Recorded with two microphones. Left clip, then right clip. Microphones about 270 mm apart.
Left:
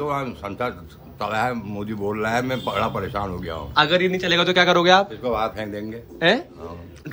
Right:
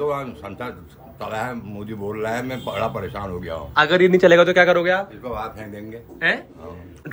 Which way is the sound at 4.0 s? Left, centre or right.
Centre.